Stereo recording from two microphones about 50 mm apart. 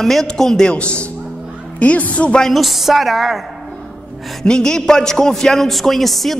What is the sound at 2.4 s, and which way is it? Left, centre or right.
A man's voice, centre.